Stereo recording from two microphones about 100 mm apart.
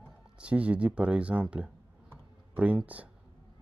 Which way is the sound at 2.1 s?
15° right (ahead or behind).